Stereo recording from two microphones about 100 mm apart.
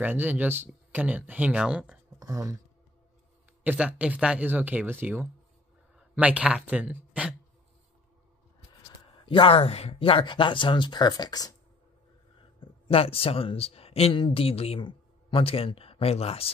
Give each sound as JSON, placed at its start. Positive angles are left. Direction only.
{"t": 0.0, "sound": "speech", "side_deg": -20}
{"t": 2.1, "sound": "a sound", "side_deg": -30}
{"t": 3.6, "sound": "speech", "side_deg": -10}
{"t": 9.2, "sound": "speech", "side_deg": 55}
{"t": 12.5, "sound": "speech", "side_deg": 65}